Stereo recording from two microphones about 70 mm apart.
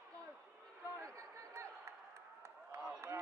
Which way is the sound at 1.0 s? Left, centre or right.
Right.